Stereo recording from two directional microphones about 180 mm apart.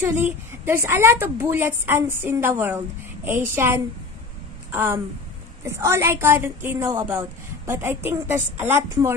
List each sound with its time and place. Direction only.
0.0 s a woman's voice: 15° right (ahead or behind)